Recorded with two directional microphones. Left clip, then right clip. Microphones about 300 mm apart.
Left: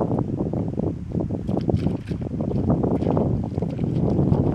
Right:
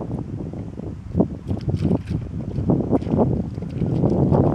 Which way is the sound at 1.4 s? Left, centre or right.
Centre.